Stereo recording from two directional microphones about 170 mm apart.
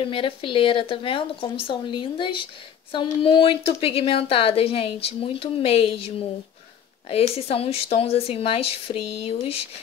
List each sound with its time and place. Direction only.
0.0 s a woman's voice: 30° left (ahead or behind)